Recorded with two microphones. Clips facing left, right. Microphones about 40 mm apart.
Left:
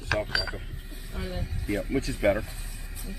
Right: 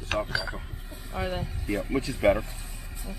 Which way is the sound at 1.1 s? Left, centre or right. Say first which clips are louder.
Right 5 dB; right.